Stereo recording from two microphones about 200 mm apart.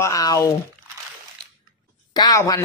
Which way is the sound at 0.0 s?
20° left (ahead or behind).